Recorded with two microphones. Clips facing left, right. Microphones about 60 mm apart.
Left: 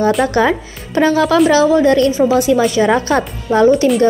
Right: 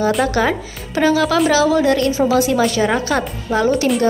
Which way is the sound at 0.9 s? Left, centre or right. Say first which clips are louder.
Left 3 dB; left.